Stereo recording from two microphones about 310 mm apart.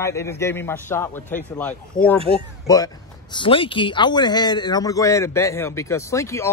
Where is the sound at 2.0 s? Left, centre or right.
Left.